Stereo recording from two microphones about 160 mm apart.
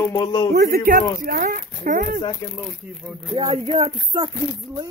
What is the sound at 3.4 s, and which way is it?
Speech, 35° right (ahead or behind).